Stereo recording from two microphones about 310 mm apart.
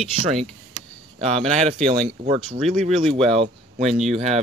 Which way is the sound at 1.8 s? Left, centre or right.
Centre.